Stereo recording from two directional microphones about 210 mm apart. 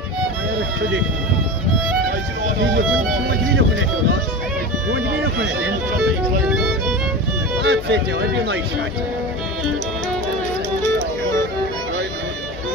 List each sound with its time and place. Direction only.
7.6 s speech: 55° right (ahead or behind)